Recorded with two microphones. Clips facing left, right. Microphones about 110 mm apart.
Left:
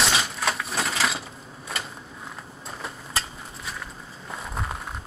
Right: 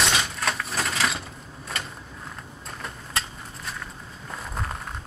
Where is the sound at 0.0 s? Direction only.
Centre (ahead or behind).